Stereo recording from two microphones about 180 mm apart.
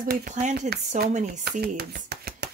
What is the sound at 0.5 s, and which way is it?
Speech, 60° right (ahead or behind).